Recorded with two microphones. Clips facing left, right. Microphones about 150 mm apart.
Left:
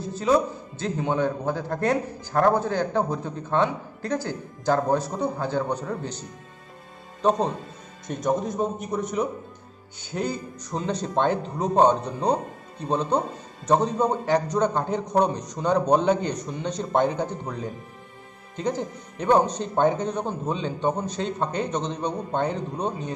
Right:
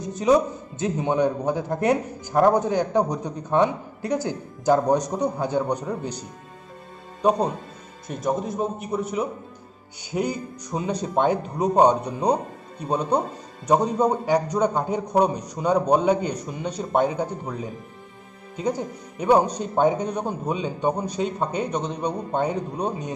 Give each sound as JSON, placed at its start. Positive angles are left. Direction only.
{"t": 0.0, "sound": "a man's voice", "side_deg": -20}